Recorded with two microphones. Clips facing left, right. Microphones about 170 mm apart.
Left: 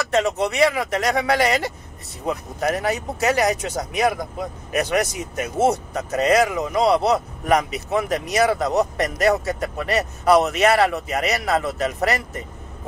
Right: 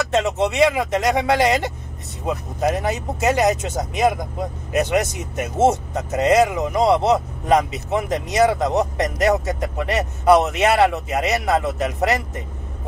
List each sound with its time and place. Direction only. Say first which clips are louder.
0.1 s speech: left 1 dB; 20° right (ahead or behind)